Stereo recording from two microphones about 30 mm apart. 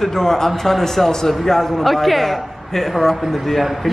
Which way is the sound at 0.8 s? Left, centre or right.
Centre.